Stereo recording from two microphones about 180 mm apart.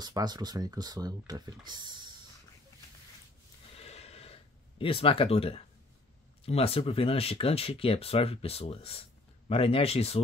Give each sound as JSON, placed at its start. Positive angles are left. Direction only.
{"t": 0.0, "sound": "speech", "side_deg": -20}
{"t": 3.8, "sound": "gasp", "side_deg": 35}
{"t": 6.4, "sound": "speech", "side_deg": 35}